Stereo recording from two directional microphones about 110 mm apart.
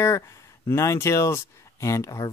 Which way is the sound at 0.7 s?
25° left (ahead or behind).